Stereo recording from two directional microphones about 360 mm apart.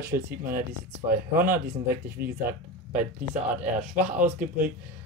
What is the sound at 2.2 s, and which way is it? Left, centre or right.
Speech, right.